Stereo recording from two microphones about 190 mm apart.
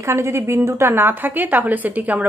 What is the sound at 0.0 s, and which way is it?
A woman's voice, 15° right (ahead or behind).